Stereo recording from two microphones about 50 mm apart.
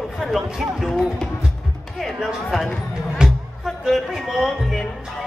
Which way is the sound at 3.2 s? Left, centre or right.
Centre.